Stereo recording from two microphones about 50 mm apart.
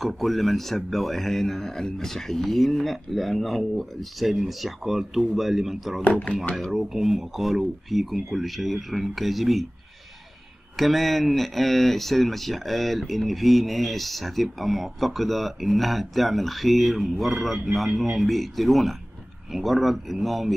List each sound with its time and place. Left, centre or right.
0.0 s speech: centre
6.0 s speech: left
6.6 s speech: centre
10.8 s speech: centre